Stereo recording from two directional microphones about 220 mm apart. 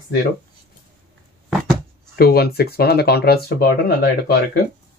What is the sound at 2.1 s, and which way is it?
Speech, 45° left (ahead or behind).